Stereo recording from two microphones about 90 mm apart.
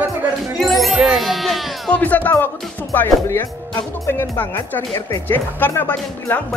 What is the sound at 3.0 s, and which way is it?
Speech, 30° left (ahead or behind).